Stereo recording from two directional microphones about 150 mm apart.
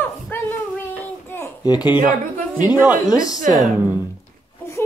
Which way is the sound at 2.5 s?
10° right (ahead or behind).